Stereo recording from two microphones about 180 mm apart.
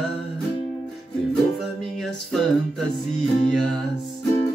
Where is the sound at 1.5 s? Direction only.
Centre (ahead or behind).